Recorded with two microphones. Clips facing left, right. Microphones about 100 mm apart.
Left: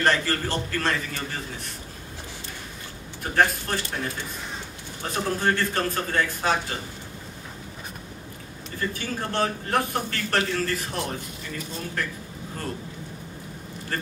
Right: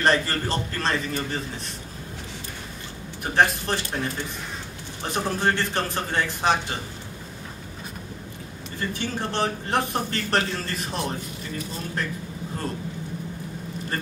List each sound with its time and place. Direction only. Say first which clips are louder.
0.0 s a man's voice: right 1 dB; 25° right (ahead or behind)
3.3 s a man's voice: right 1 dB; 25° right (ahead or behind)
5.0 s a man's voice: right 1 dB; 20° right (ahead or behind)
8.9 s a man's voice: right 2 dB; 25° right (ahead or behind)